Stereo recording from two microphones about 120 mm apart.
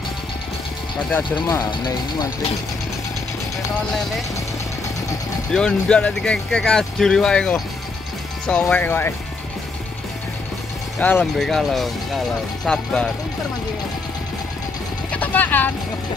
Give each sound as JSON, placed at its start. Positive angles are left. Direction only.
{"t": 1.5, "sound": "speech", "side_deg": 35}
{"t": 5.5, "sound": "speech", "side_deg": 5}
{"t": 11.0, "sound": "speech", "side_deg": 15}
{"t": 11.3, "sound": "speech", "side_deg": 0}
{"t": 15.0, "sound": "speech", "side_deg": 15}